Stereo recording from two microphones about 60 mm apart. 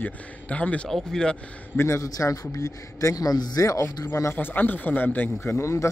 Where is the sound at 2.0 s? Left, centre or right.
Left.